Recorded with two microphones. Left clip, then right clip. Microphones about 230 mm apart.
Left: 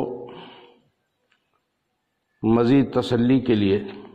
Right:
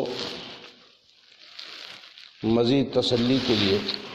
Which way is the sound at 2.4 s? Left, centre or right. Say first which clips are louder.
Left 3 dB; left.